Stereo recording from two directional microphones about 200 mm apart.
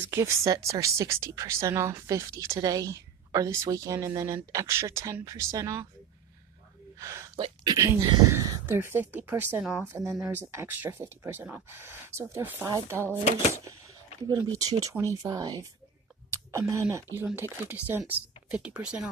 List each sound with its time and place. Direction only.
0.0 s a woman's voice: 15° right (ahead or behind)
7.0 s a woman's voice: 15° right (ahead or behind)
14.9 s a woman's voice: 15° right (ahead or behind)